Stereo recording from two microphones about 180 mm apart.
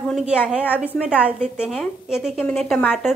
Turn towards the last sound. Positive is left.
turn(degrees=0)  # may be behind; listen again after turning